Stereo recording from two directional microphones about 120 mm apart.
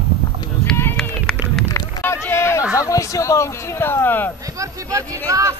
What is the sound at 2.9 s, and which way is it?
Speech, 25° left (ahead or behind).